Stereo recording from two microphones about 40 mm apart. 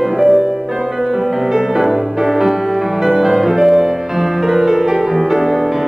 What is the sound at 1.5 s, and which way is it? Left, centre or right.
Music, centre.